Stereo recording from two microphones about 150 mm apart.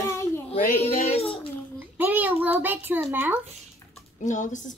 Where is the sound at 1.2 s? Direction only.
35° left (ahead or behind).